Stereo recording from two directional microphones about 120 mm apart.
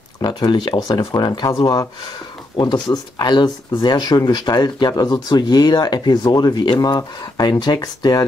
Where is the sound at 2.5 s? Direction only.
35° left (ahead or behind).